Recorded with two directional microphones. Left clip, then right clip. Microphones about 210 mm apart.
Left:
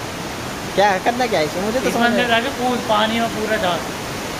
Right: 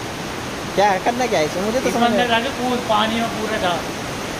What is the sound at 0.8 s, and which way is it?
Speech, 5° left (ahead or behind).